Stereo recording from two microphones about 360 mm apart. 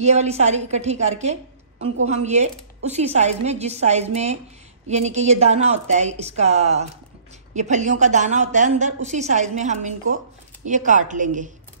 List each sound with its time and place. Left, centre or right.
0.0 s a woman's voice: centre